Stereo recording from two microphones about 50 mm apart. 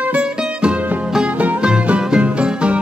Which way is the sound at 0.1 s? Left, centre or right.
Right.